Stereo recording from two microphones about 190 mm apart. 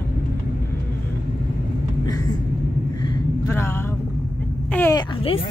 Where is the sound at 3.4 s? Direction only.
15° left (ahead or behind).